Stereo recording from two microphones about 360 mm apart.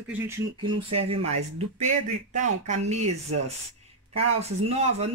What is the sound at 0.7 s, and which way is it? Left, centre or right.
Speech, right.